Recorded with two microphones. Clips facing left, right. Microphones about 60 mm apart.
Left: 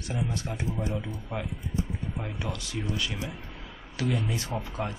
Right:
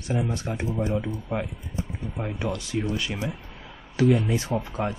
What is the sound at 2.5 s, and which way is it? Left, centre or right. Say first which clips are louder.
Speech: right 5 dB; right.